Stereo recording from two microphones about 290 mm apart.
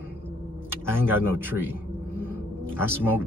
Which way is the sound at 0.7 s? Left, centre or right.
Centre.